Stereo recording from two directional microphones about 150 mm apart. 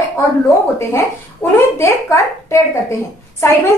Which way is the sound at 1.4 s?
15° left (ahead or behind).